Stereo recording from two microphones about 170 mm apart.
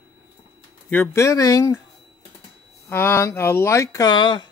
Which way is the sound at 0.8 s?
10° left (ahead or behind).